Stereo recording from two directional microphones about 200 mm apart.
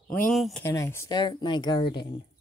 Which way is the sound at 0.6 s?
15° left (ahead or behind).